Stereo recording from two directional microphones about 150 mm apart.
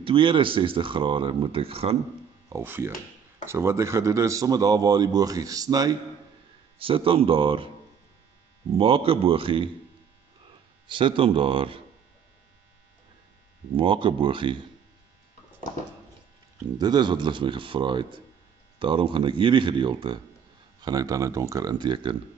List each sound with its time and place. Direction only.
0.0 s speech: 35° right (ahead or behind)
2.5 s speech: 15° right (ahead or behind)
6.8 s speech: 35° right (ahead or behind)
8.7 s speech: 40° right (ahead or behind)
10.9 s speech: 35° right (ahead or behind)
13.7 s speech: 35° right (ahead or behind)
16.7 s speech: 25° right (ahead or behind)